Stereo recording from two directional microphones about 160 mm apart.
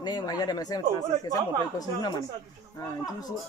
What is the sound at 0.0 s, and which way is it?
Speech, 25° left (ahead or behind).